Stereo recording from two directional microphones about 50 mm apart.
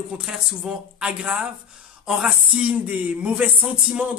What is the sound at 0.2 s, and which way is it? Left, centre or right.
Speech, centre.